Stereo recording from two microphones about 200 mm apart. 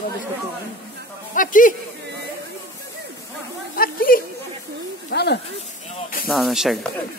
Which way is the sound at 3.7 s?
45° left (ahead or behind).